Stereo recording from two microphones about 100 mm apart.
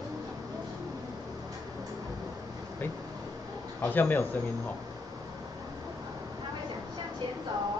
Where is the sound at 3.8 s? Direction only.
20° left (ahead or behind).